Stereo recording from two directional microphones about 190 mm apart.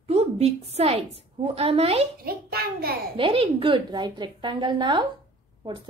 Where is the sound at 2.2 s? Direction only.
55° right (ahead or behind).